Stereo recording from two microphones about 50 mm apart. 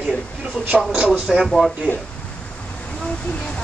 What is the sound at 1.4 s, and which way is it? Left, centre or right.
Speech, centre.